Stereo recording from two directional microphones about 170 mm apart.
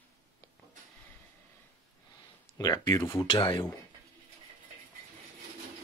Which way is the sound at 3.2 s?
30° left (ahead or behind).